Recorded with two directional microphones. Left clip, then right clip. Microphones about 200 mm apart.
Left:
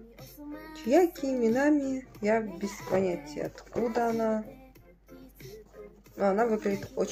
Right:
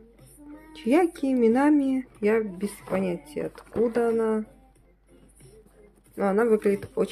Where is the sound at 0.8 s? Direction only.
60° right (ahead or behind).